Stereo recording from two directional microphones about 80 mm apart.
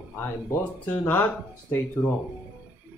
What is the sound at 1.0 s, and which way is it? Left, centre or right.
Speech, left.